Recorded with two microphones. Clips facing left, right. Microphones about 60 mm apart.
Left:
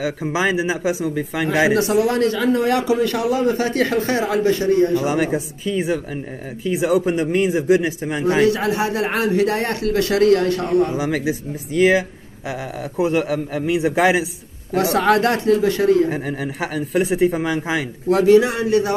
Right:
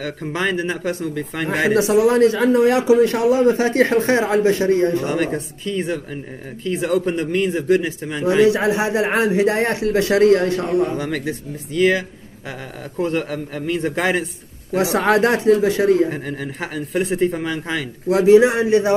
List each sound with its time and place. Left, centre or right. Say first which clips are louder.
0.0 s speech: left 3 dB; centre
1.8 s a man's voice: right 3 dB; right
5.0 s a man's voice: left 1 dB; centre
8.5 s a man's voice: right 2 dB; right
10.9 s a man's voice: left 2 dB; centre
14.7 s a man's voice: even; right
16.1 s a man's voice: left 2 dB; centre
18.1 s a man's voice: right 2 dB; centre